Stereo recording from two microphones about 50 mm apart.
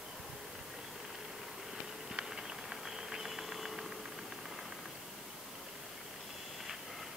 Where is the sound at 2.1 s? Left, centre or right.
Centre.